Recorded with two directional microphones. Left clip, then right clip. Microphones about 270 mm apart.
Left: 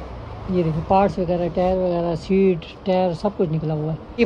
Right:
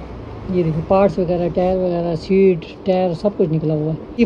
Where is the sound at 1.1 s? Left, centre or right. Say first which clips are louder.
Right 3 dB; left.